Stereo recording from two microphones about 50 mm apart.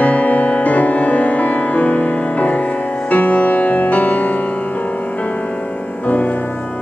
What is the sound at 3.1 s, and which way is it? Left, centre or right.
Music, left.